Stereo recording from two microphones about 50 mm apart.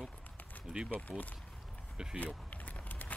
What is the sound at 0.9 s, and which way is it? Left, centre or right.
Speech, left.